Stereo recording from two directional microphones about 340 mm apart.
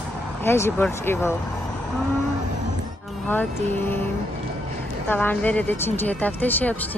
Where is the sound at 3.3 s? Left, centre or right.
Centre.